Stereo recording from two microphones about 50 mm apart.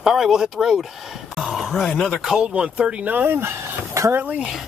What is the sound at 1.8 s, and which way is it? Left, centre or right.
Speech, centre.